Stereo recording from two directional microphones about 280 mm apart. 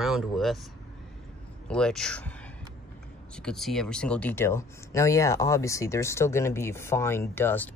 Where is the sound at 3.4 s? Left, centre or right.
Centre.